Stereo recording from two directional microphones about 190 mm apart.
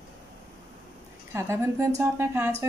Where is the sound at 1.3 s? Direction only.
15° right (ahead or behind).